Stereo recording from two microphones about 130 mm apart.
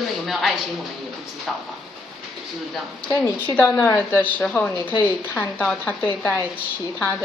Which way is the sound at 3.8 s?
20° left (ahead or behind).